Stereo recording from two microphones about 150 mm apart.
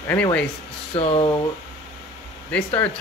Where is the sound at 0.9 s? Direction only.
40° left (ahead or behind).